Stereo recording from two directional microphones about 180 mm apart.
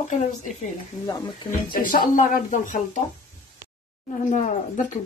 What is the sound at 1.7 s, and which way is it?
Speech, 50° left (ahead or behind).